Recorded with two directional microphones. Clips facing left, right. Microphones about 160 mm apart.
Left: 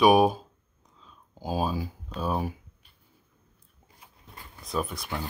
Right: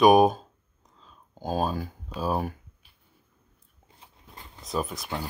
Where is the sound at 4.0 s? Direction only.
25° right (ahead or behind).